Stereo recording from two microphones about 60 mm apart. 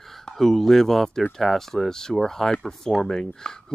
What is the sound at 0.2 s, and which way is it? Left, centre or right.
Speech, centre.